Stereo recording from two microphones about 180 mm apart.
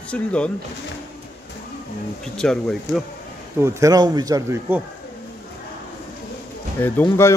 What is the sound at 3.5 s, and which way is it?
A man's voice, 15° right (ahead or behind).